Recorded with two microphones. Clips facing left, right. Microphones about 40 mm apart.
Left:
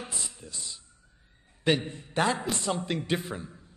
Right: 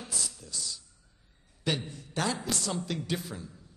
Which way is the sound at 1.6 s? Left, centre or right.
Left.